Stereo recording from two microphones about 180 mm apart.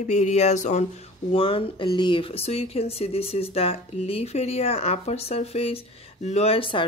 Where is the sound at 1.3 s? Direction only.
30° left (ahead or behind).